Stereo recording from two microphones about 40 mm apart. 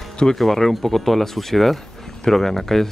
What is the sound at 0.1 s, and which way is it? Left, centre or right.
Music, left.